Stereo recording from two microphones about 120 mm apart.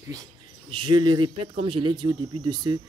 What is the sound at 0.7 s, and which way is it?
Speech, 40° right (ahead or behind).